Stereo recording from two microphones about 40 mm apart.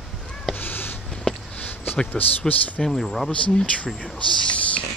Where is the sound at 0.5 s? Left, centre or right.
Left.